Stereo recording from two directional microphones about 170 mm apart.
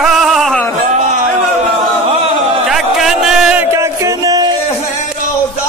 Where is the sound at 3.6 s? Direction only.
15° right (ahead or behind).